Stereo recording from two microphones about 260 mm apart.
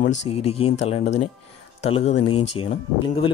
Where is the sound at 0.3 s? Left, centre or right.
Left.